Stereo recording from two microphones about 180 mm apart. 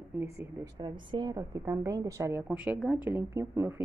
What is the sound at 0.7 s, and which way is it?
A woman's voice, 25° right (ahead or behind).